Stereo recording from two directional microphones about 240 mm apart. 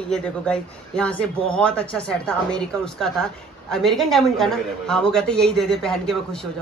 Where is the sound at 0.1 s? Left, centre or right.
Centre.